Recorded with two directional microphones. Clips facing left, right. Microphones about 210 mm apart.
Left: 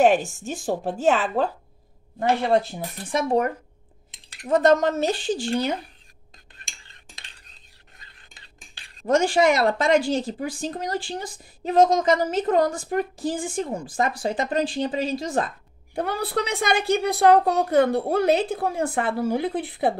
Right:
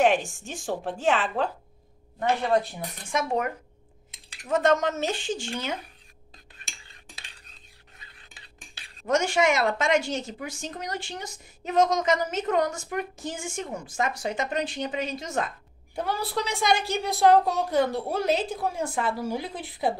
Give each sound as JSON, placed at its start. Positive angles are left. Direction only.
{"t": 0.0, "sound": "a woman's voice", "side_deg": 40}
{"t": 9.0, "sound": "a woman's voice", "side_deg": 35}
{"t": 15.9, "sound": "a woman's voice", "side_deg": 55}